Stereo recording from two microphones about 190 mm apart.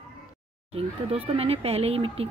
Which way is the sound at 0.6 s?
30° right (ahead or behind).